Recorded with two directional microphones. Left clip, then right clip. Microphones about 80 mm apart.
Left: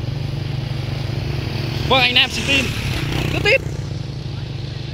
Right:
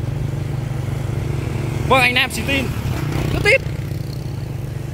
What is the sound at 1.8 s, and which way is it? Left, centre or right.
Speech, right.